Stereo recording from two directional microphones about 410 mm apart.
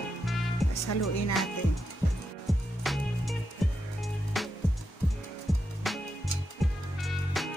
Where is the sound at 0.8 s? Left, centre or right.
Left.